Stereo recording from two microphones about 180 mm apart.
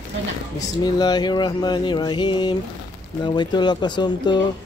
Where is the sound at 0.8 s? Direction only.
20° left (ahead or behind).